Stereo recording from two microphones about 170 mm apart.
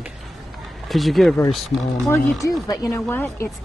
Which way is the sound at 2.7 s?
20° left (ahead or behind).